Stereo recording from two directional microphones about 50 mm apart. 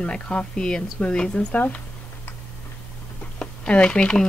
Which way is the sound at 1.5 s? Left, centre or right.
Left.